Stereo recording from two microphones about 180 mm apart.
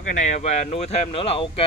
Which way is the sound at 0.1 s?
40° left (ahead or behind).